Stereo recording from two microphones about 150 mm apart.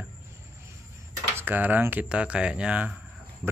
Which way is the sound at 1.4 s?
10° right (ahead or behind).